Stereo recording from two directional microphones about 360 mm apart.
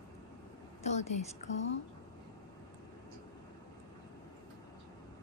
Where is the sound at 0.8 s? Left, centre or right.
Centre.